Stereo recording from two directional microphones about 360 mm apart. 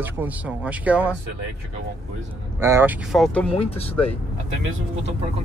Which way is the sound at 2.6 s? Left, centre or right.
Centre.